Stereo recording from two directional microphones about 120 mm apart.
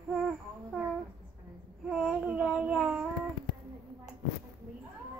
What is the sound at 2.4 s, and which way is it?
Babbling, 10° right (ahead or behind).